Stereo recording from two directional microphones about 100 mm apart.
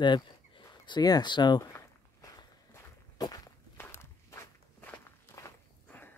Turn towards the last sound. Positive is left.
turn(degrees=20)  # may be behind; listen again after turning